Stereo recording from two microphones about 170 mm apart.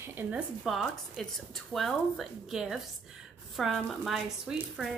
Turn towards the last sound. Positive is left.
turn(degrees=0)  # may be behind; listen again after turning